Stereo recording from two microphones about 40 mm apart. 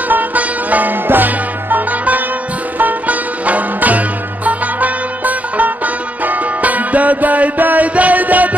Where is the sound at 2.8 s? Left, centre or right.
Right.